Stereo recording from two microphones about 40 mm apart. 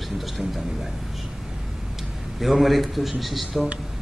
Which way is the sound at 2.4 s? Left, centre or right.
Centre.